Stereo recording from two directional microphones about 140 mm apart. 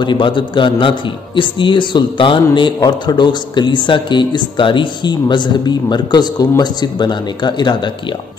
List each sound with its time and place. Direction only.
0.0 s a man's voice: 35° left (ahead or behind)